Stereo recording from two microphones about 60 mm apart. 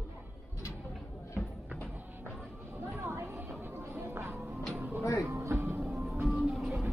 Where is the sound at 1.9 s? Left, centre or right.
Right.